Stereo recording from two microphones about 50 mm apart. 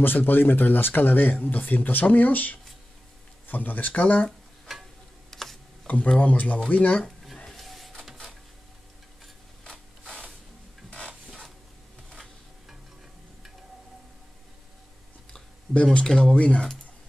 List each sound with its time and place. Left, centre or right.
0.0 s speech: left
4.7 s a sound: centre
5.9 s speech: left
6.7 s speech: left
7.4 s printer: centre
9.2 s a sound: centre
15.7 s speech: left
16.1 s speech: centre
16.3 s speech: left